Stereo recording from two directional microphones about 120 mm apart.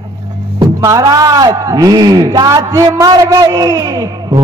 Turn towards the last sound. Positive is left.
turn(degrees=-30)  # may be behind; listen again after turning